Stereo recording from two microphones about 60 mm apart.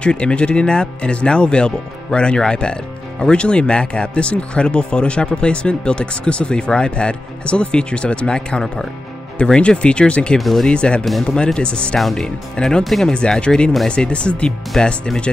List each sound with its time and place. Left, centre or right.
0.0 s speech: centre
10.3 s speech: centre
10.7 s speech: centre
12.0 s speech: centre
12.5 s speech: centre